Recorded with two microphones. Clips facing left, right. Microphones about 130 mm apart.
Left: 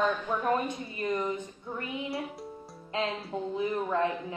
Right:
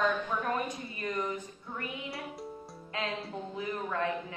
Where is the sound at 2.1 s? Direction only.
Centre (ahead or behind).